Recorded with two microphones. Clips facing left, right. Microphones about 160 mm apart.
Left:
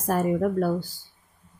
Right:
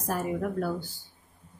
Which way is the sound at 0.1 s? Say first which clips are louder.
Left 7 dB; 45° left (ahead or behind).